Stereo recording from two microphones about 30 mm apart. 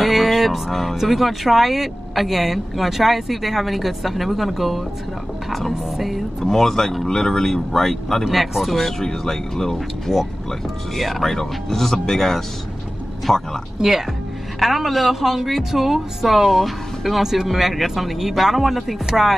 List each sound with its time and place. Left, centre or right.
0.0 s music: centre
0.9 s a woman's voice: centre
6.4 s speech: centre
8.3 s a woman's voice: centre
8.7 s speech: centre
13.8 s speech: right
14.6 s a woman's voice: centre